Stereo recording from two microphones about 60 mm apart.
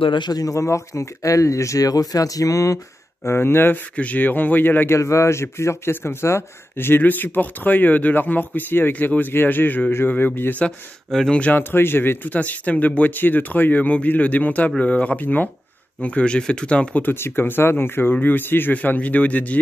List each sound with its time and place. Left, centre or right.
0.3 s speech: left
3.3 s speech: left
3.9 s speech: left
4.9 s speech: left
7.0 s speech: left
10.6 s speech: centre
11.5 s speech: left
12.4 s speech: left
17.0 s speech: left